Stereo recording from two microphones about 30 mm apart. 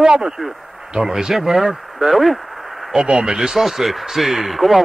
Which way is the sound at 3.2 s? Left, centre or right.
Right.